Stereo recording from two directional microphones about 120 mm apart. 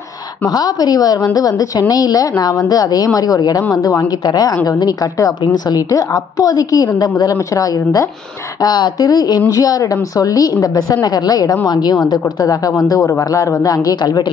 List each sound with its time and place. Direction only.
0.5 s a woman's voice: 30° left (ahead or behind)